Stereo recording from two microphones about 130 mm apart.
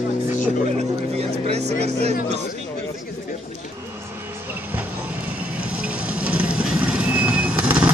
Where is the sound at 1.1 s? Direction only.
55° right (ahead or behind).